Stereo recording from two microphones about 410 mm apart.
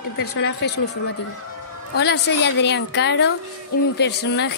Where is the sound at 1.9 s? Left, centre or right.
Left.